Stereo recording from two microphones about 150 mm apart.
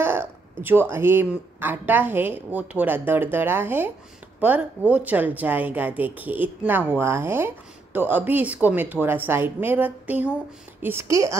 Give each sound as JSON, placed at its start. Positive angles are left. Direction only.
{"t": 0.0, "sound": "a woman's voice", "side_deg": -15}